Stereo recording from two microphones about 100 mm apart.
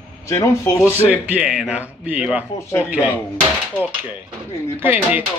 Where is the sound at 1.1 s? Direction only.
15° right (ahead or behind).